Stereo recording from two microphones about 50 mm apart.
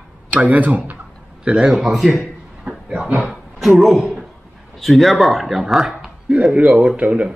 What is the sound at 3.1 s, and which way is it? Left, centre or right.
Speech, centre.